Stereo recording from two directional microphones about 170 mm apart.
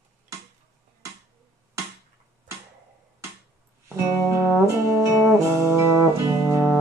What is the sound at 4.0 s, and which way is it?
Brass instrument, 15° right (ahead or behind).